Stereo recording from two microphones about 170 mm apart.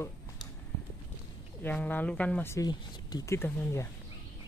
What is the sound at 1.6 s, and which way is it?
Speech, 10° left (ahead or behind).